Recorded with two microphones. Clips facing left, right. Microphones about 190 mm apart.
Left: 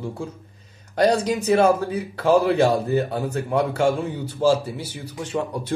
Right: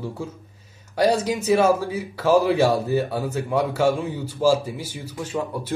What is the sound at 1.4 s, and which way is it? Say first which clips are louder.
A man's voice: even; 10° right (ahead or behind).